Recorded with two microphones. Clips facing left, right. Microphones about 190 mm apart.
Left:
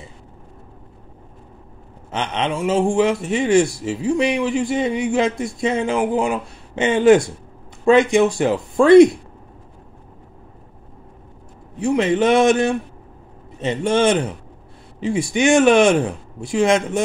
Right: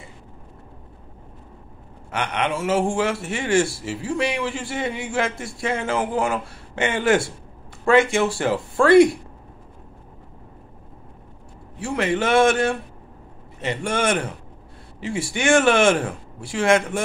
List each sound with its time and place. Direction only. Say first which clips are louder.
2.0 s a man's voice: left 2 dB; 20° left (ahead or behind)
11.8 s a man's voice: left 6 dB; 20° left (ahead or behind)